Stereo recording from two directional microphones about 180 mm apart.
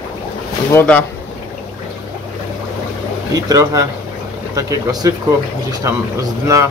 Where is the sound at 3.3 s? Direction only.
20° right (ahead or behind).